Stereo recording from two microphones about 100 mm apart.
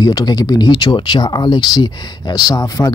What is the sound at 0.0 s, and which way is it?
Speech, 40° left (ahead or behind).